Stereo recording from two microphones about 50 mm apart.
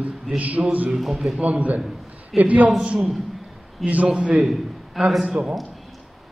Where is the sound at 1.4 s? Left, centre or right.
Right.